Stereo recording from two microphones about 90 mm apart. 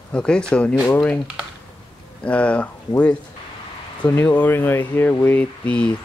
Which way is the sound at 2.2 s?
15° left (ahead or behind).